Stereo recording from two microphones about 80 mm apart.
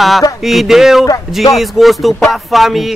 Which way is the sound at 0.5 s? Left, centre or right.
Centre.